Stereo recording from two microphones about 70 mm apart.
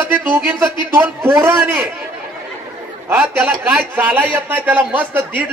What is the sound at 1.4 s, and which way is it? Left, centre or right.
Speech, right.